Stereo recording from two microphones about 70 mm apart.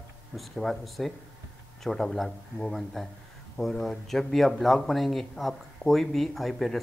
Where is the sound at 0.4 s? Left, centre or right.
Centre.